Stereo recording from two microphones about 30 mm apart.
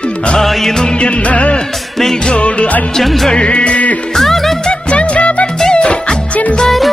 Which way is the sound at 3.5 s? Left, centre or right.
Left.